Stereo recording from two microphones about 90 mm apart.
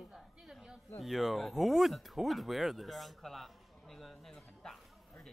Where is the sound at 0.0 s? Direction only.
5° right (ahead or behind).